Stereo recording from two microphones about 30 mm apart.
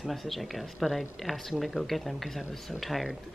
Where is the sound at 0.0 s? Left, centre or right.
Centre.